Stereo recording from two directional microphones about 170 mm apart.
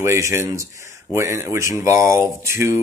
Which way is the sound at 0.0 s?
15° right (ahead or behind).